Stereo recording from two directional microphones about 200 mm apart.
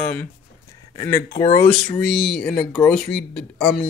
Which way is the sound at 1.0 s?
15° left (ahead or behind).